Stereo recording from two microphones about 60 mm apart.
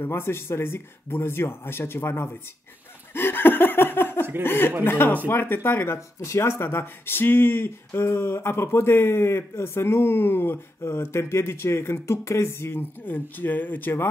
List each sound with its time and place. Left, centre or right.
0.1 s speech: left
3.2 s laughter: left
4.4 s speech: left